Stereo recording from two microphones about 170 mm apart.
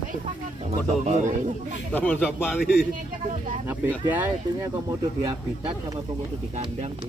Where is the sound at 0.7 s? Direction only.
40° right (ahead or behind).